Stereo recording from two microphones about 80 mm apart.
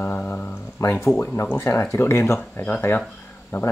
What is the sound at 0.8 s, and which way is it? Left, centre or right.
Speech, left.